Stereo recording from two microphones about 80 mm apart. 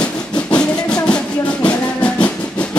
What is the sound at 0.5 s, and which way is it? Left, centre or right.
Music, centre.